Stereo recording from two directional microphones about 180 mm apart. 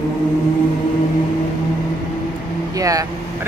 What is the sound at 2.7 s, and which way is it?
Vehicle, 20° right (ahead or behind).